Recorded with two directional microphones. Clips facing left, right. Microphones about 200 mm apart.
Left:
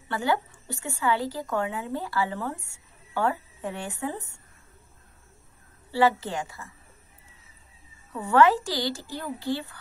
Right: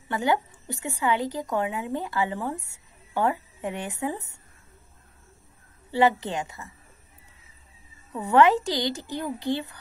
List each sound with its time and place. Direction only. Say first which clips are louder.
0.1 s a woman's voice: right 2 dB; 20° right (ahead or behind)
5.9 s a woman's voice: right 1 dB; 20° right (ahead or behind)
8.1 s a woman's voice: right 1 dB; 20° right (ahead or behind)